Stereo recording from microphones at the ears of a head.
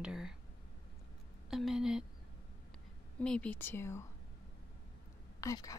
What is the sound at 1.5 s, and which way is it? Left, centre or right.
Speech, centre.